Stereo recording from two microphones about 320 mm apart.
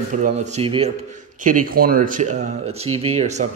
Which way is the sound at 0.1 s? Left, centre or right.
Right.